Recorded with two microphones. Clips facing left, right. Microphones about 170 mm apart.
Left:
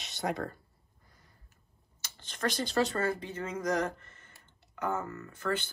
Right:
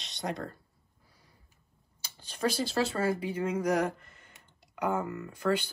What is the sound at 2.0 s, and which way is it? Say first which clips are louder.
Speech: right 3 dB; 10° right (ahead or behind).